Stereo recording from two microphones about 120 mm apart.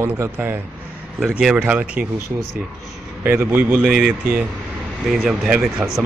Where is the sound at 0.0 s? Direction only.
15° right (ahead or behind).